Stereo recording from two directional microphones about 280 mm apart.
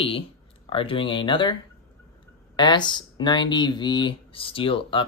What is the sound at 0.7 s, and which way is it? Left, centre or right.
Speech, centre.